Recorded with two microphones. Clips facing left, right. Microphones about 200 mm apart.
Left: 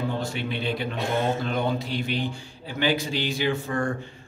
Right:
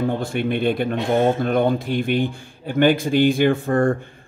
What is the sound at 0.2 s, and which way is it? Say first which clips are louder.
Speech: right 8 dB; 55° right (ahead or behind).